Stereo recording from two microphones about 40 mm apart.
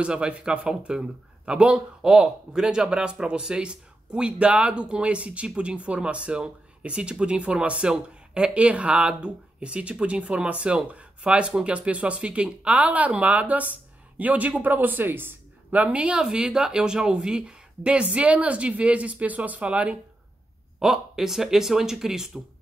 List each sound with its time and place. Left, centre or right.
0.0 s speech: right
2.2 s speech: centre; by 14.6 s right
14.6 s speech: right
15.7 s speech: right
16.0 s speech: right
20.8 s speech: centre